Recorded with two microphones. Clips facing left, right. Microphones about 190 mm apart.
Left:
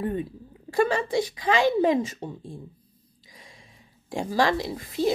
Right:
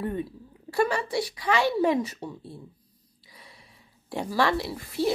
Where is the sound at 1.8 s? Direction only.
20° left (ahead or behind).